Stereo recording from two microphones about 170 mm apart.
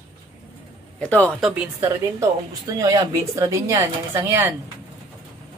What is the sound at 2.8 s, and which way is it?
Speech, 20° right (ahead or behind).